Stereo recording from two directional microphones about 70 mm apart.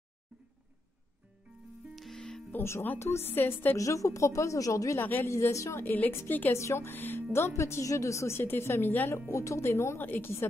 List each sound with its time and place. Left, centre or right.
2.0 s music: centre
2.5 s a woman's voice: left
3.7 s speech: left
4.9 s a woman's voice: left
5.3 s speech: left
5.9 s a woman's voice: left
6.5 s a woman's voice: left
9.3 s a woman's voice: left
10.0 s a woman's voice: left